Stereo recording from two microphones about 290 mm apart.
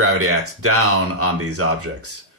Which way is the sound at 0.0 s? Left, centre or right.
Right.